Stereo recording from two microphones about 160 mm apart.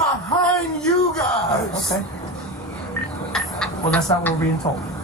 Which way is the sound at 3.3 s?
Centre (ahead or behind).